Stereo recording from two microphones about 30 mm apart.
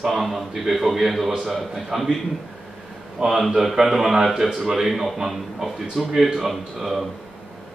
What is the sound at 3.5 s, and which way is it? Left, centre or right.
A man's voice, centre.